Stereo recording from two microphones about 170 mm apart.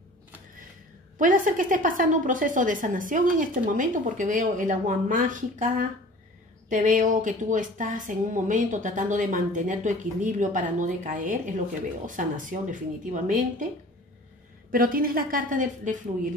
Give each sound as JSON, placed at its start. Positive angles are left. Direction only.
{"t": 1.1, "sound": "a woman's voice", "side_deg": -50}
{"t": 14.7, "sound": "a woman's voice", "side_deg": -55}